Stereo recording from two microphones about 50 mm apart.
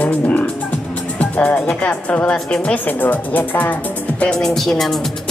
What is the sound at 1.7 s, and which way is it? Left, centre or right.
Speech, left.